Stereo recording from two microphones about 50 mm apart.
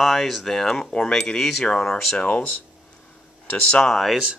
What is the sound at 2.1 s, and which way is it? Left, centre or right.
Speech, left.